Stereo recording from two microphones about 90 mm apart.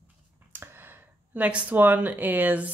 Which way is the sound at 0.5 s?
25° right (ahead or behind).